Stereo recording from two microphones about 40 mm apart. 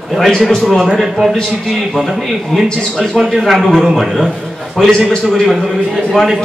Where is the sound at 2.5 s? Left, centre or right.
Centre.